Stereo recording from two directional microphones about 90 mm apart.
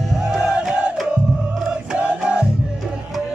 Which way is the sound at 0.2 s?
10° right (ahead or behind).